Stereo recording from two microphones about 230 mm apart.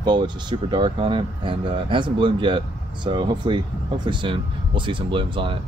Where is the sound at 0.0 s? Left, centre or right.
Centre.